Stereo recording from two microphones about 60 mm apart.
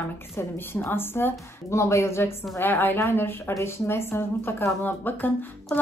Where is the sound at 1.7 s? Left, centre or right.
Left.